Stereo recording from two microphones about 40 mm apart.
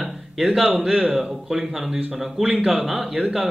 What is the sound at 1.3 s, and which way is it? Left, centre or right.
A man's voice, centre.